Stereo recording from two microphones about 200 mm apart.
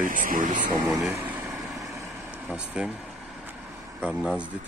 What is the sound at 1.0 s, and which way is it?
Vehicle, 10° right (ahead or behind).